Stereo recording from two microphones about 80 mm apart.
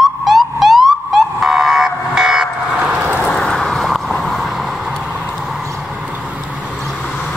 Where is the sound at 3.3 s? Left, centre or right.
Centre.